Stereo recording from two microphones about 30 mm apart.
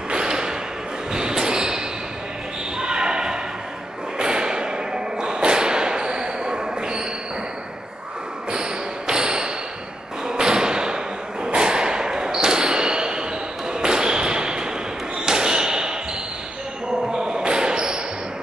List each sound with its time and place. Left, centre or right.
0.1 s thump: right
1.1 s a sound: right
2.8 s basketball bounce: right
4.2 s thump: right
8.5 s a sound: right
10.2 s thump: right
11.4 s a sound: right
15.1 s basketball bounce: right
17.1 s basketball bounce: right